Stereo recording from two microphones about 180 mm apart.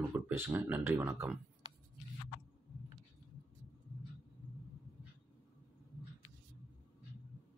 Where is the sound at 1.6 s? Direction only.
25° right (ahead or behind).